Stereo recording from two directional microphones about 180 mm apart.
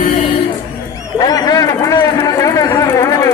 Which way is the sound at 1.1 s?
20° left (ahead or behind).